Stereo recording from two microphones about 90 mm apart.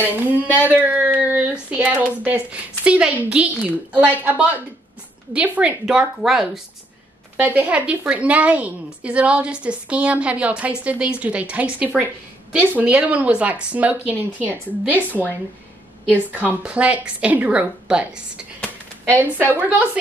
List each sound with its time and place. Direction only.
0.7 s speech: 15° right (ahead or behind)
1.2 s child singing: 15° right (ahead or behind)
1.7 s a woman's voice: 15° right (ahead or behind)
5.9 s speech: 5° right (ahead or behind)
7.3 s a woman's voice: 20° right (ahead or behind)
12.5 s a woman's voice: 15° right (ahead or behind)